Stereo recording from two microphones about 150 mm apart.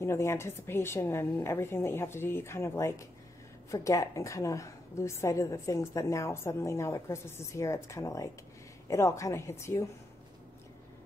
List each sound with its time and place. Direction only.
0.0 s a woman's voice: 20° left (ahead or behind)